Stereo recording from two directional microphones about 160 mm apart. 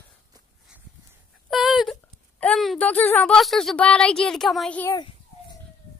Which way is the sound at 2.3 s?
5° left (ahead or behind).